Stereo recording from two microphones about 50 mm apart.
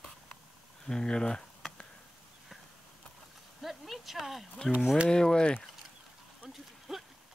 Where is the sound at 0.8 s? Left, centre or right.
Centre.